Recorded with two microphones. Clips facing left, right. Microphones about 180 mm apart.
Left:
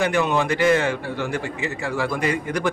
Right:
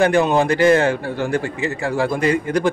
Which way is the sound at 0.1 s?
35° right (ahead or behind).